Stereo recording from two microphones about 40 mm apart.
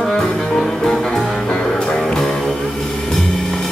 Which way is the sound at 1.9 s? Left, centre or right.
Centre.